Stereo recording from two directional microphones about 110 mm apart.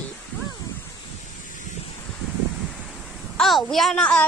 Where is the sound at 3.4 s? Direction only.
Centre (ahead or behind).